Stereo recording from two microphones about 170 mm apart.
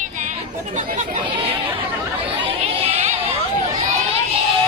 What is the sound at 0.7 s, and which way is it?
Chatter, 45° right (ahead or behind).